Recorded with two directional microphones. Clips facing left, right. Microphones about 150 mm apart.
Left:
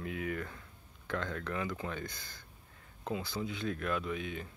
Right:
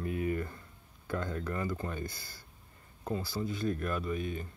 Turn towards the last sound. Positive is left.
turn(degrees=0)  # may be behind; listen again after turning